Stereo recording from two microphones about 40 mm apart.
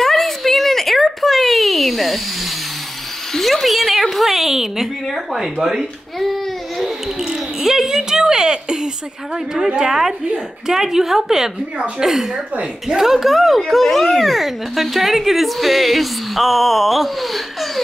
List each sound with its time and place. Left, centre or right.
0.0 s a sound: centre
3.3 s speech: centre
6.1 s speech: centre
6.8 s speech: centre